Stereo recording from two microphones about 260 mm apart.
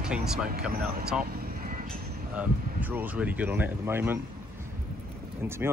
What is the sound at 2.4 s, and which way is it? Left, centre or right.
Speech, centre.